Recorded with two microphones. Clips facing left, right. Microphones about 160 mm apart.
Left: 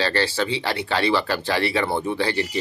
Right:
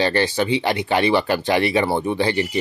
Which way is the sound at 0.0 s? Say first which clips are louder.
Right 3 dB; 15° right (ahead or behind).